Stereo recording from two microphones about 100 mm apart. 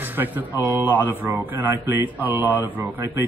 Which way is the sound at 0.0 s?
20° right (ahead or behind).